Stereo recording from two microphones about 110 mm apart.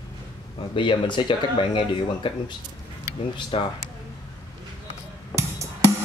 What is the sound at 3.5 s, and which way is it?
Speech, 50° left (ahead or behind).